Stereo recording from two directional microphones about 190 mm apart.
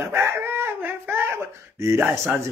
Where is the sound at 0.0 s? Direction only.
15° right (ahead or behind).